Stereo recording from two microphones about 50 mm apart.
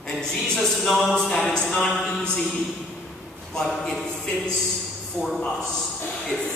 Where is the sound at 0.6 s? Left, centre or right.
Centre.